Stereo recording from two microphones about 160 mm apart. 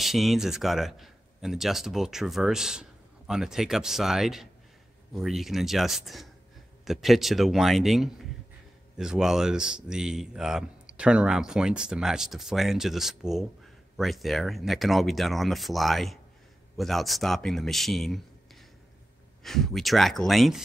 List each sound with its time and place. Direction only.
0.0 s speech: centre (ahead or behind)